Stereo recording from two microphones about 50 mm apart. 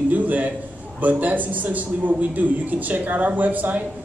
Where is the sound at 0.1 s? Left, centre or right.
Right.